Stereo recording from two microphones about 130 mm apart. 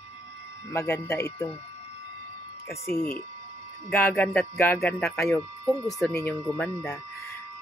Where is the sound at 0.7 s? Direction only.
20° left (ahead or behind).